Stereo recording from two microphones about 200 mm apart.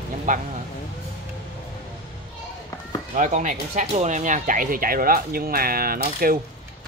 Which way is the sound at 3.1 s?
40° right (ahead or behind).